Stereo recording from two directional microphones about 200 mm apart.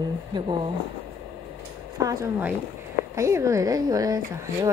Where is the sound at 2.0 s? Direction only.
15° right (ahead or behind).